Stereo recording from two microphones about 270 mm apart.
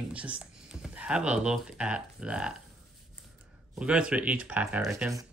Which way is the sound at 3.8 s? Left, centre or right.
Centre.